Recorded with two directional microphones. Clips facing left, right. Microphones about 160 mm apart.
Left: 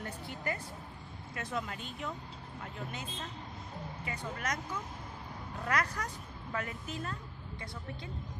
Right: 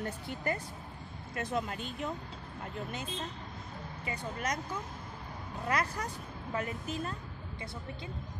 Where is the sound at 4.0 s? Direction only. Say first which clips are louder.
Right 3 dB; 30° right (ahead or behind).